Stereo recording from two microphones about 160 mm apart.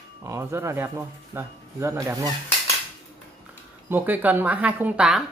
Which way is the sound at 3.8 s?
10° right (ahead or behind).